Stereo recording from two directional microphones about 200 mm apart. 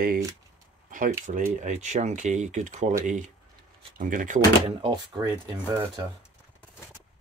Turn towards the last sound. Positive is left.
turn(degrees=-20)  # may be behind; listen again after turning